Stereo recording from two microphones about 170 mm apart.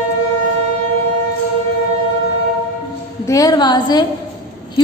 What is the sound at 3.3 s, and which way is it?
Speech, 20° left (ahead or behind).